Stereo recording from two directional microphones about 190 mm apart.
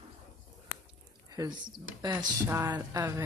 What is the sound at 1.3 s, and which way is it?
Speech, 20° right (ahead or behind).